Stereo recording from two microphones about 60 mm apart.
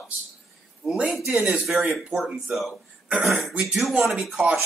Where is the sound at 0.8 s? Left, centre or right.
Centre.